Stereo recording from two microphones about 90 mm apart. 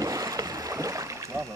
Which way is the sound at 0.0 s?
35° right (ahead or behind).